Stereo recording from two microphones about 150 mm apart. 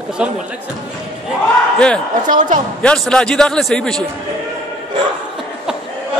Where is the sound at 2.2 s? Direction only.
60° right (ahead or behind).